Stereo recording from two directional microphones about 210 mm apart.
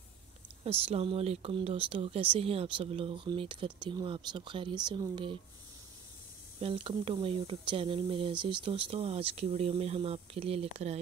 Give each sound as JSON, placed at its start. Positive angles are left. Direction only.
{"t": 0.7, "sound": "speech", "side_deg": -25}
{"t": 6.6, "sound": "speech", "side_deg": -25}